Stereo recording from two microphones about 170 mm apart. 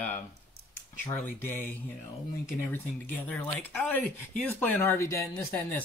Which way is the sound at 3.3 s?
10° left (ahead or behind).